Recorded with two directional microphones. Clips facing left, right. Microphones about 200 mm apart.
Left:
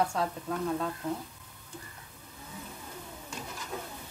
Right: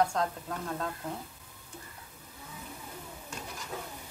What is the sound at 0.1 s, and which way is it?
Speech, 5° left (ahead or behind).